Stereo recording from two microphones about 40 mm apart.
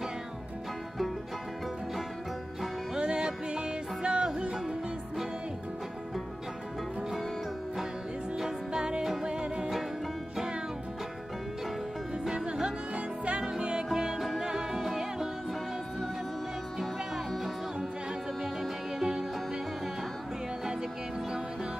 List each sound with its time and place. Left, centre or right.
3.0 s music: right
7.0 s music: centre
8.4 s music: centre
12.1 s music: centre
12.9 s music: right
13.4 s music: right
18.9 s music: centre